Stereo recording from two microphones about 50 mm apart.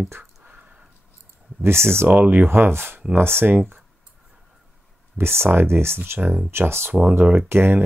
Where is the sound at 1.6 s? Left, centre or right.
Right.